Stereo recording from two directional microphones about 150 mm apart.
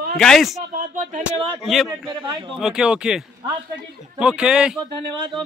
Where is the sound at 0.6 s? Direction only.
60° right (ahead or behind).